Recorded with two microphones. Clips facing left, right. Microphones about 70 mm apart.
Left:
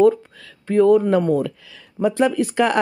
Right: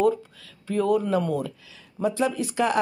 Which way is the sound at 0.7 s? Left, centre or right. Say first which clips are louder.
Left 8 dB; left.